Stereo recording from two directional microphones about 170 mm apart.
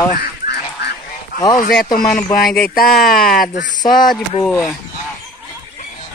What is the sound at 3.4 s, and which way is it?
Speech, 50° left (ahead or behind).